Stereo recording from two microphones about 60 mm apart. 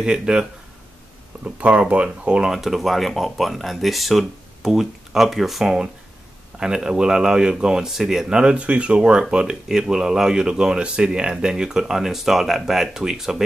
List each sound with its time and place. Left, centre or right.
0.0 s speech: centre